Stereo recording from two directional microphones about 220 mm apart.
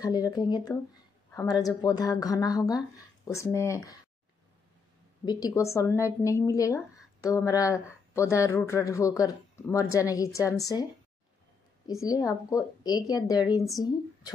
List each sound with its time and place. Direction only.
0.0 s speech: 15° left (ahead or behind)
5.2 s speech: 15° left (ahead or behind)
11.9 s speech: 15° left (ahead or behind)